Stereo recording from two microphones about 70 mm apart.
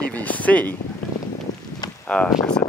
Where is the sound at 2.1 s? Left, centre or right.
Centre.